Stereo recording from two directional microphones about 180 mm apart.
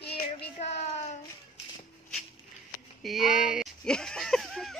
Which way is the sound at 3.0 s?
Centre (ahead or behind).